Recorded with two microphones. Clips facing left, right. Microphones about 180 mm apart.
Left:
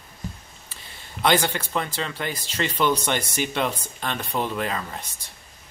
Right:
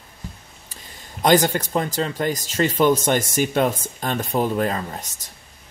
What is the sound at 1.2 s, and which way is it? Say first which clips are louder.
Speech: right 5 dB; 45° right (ahead or behind).